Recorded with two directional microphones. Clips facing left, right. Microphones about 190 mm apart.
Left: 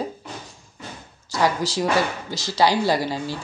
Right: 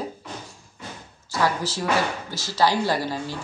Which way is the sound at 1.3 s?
15° left (ahead or behind).